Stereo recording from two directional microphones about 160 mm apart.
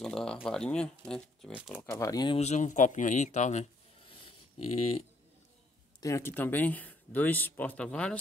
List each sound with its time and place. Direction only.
0.0 s speech: 5° left (ahead or behind); by 2.3 s 25° left (ahead or behind)
2.3 s speech: 45° left (ahead or behind)
4.6 s speech: 40° left (ahead or behind)
5.9 s speech: 20° left (ahead or behind)